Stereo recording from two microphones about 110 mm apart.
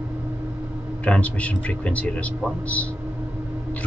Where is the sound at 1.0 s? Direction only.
10° left (ahead or behind).